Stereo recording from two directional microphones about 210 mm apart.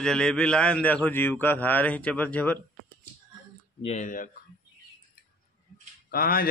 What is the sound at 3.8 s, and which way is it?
Speech, 35° left (ahead or behind).